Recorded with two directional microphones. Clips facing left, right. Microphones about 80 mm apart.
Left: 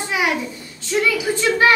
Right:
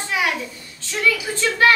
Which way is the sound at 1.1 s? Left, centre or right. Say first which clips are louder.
Left 4 dB; centre.